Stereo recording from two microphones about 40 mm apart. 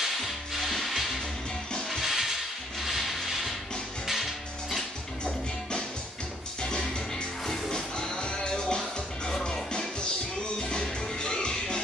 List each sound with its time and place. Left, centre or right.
0.0 s music: centre
1.9 s a sound: centre
4.1 s music: centre
5.2 s music: left